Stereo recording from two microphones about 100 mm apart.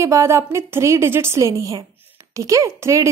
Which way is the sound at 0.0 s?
30° right (ahead or behind).